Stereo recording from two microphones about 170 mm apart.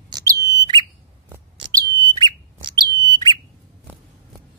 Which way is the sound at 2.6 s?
25° right (ahead or behind).